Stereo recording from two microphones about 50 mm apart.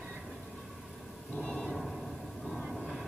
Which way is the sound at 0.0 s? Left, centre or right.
Centre.